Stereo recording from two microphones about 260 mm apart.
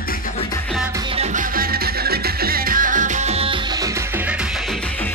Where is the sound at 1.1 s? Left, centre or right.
Right.